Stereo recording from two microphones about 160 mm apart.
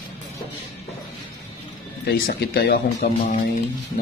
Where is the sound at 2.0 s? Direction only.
75° left (ahead or behind).